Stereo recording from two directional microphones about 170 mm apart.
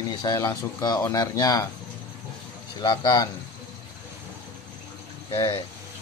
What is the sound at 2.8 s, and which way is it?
Speech, 25° left (ahead or behind).